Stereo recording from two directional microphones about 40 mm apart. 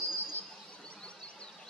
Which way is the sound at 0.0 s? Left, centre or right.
Left.